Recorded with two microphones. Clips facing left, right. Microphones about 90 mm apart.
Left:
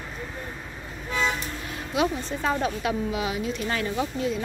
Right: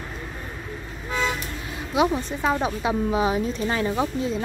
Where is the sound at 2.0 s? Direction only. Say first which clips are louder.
Right 4 dB; 20° right (ahead or behind).